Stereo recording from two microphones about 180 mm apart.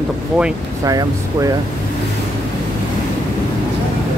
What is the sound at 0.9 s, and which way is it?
Speech, 20° right (ahead or behind).